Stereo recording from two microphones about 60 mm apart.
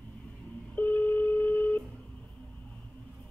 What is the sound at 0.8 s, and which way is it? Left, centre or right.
Telephone, left.